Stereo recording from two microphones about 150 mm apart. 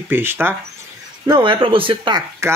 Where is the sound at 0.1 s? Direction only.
15° right (ahead or behind).